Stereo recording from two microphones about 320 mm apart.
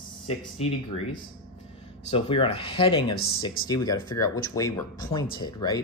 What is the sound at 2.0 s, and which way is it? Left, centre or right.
Speech, centre.